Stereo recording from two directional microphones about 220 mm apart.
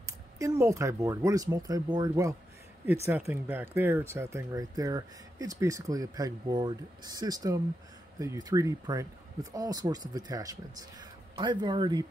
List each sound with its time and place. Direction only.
0.0 s speech: 15° right (ahead or behind)